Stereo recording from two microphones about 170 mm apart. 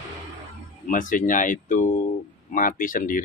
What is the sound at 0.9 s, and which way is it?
Speech, 50° left (ahead or behind).